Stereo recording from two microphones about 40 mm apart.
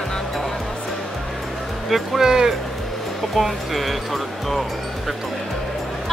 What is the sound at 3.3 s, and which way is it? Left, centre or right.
Speech, centre.